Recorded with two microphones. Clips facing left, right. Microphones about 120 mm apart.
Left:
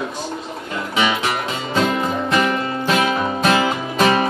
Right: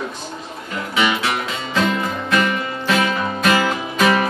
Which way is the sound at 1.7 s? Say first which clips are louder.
Left 1 dB; 25° left (ahead or behind).